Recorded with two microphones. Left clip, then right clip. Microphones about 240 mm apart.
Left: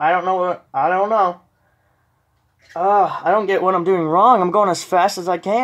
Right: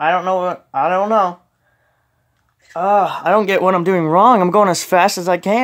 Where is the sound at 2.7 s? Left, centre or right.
Right.